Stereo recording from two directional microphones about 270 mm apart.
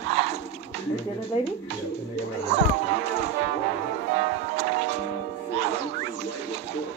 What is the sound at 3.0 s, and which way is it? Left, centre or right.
Speech, right.